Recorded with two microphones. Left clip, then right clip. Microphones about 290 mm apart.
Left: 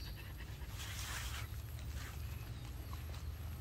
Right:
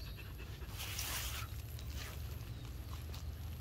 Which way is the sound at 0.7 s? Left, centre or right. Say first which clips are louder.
Right 3 dB; right.